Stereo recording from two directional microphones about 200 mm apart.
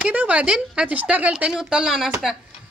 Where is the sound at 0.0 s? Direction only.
5° right (ahead or behind).